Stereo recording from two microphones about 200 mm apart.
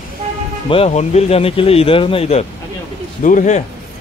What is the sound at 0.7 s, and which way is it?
Speech, 30° left (ahead or behind).